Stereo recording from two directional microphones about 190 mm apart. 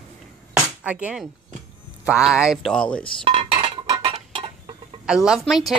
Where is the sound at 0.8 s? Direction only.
5° right (ahead or behind).